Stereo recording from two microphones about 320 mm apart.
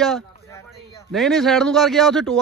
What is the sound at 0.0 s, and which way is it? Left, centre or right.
Speech, centre.